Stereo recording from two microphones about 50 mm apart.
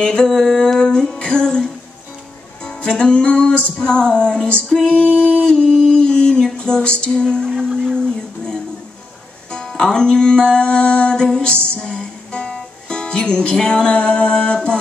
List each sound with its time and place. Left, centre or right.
0.0 s music: centre
2.6 s music: centre
5.2 s a sound: centre
6.4 s music: centre
7.4 s music: centre
9.5 s music: centre